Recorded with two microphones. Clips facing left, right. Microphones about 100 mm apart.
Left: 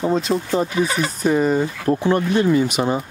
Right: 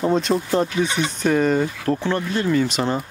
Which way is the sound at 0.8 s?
40° left (ahead or behind).